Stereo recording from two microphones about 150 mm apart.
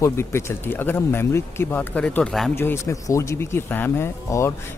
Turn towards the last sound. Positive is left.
turn(degrees=15)  # may be behind; listen again after turning